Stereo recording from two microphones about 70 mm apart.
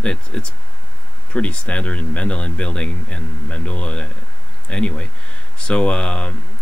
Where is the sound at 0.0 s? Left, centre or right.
Centre.